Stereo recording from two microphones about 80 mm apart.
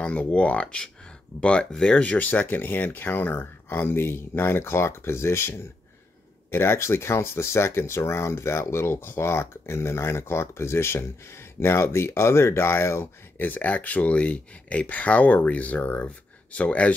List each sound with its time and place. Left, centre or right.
0.0 s speech: centre